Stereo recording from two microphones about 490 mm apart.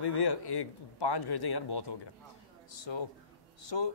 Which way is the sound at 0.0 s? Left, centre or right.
Left.